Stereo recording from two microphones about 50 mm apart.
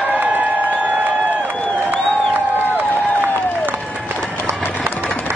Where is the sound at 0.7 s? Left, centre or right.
Right.